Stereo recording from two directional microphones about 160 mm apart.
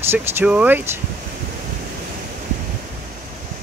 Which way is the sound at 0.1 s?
10° right (ahead or behind).